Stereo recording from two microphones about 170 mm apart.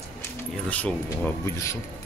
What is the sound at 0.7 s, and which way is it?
Speech, 10° left (ahead or behind).